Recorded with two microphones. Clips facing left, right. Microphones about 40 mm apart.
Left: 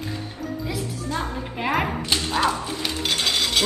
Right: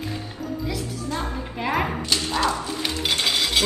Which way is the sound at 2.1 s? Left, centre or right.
Left.